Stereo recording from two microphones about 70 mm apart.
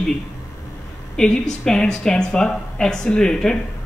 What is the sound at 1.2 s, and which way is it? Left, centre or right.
Speech, centre.